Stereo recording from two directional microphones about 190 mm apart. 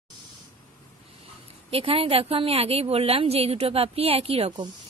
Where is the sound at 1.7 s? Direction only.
30° right (ahead or behind).